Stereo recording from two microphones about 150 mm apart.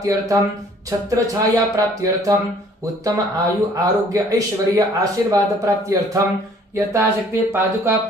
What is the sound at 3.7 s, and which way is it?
Speech, 20° right (ahead or behind).